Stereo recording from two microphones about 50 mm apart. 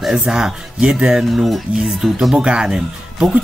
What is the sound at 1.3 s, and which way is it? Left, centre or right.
Speech, centre.